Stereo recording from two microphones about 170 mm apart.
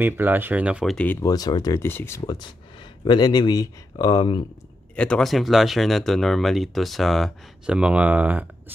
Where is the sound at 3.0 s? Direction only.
25° left (ahead or behind).